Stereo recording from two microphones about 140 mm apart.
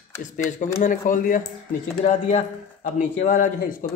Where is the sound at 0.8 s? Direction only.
70° left (ahead or behind).